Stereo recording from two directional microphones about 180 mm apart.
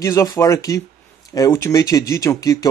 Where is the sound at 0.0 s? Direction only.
15° left (ahead or behind).